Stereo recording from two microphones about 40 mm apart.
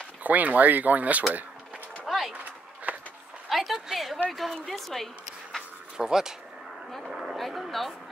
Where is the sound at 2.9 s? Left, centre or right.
Right.